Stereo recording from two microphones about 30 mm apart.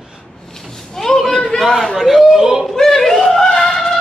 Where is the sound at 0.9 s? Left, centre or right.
Centre.